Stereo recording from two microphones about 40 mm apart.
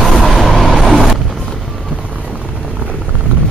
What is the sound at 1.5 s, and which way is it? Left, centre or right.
Music, centre.